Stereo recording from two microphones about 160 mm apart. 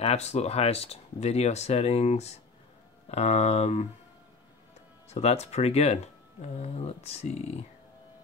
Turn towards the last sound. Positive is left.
turn(degrees=40)  # may be behind; listen again after turning